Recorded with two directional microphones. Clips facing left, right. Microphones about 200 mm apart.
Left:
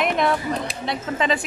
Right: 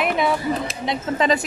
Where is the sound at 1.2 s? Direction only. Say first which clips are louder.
Right 3 dB; 40° right (ahead or behind).